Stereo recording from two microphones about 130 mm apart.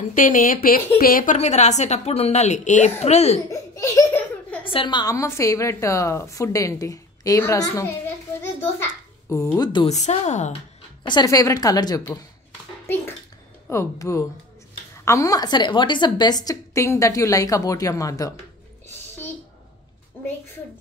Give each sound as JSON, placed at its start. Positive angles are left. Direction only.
{"t": 0.1, "sound": "a woman's voice", "side_deg": 90}
{"t": 3.4, "sound": "speech", "side_deg": 25}
{"t": 4.6, "sound": "a woman's voice", "side_deg": 40}
{"t": 9.8, "sound": "a woman's voice", "side_deg": 60}
{"t": 11.1, "sound": "a woman's voice", "side_deg": 30}
{"t": 13.7, "sound": "a woman's voice", "side_deg": 20}